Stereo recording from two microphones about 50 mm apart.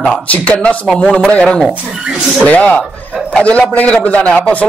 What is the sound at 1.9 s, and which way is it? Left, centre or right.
Speech, centre.